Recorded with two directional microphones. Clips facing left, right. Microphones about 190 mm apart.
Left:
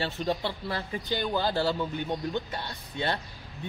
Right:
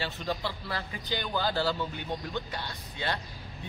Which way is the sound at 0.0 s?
30° left (ahead or behind).